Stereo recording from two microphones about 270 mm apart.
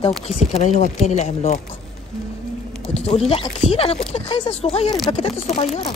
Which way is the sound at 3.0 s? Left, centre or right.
Left.